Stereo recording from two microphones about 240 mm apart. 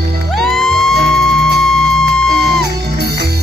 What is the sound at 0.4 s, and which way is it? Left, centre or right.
Music, centre.